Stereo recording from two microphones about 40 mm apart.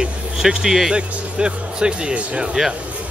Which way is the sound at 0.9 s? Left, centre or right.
Right.